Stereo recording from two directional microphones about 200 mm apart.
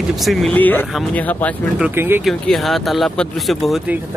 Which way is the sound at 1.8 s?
10° right (ahead or behind).